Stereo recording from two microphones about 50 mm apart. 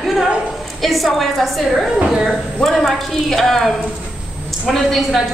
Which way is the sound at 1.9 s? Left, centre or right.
Centre.